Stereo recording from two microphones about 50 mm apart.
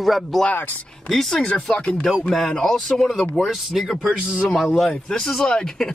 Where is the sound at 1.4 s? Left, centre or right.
Centre.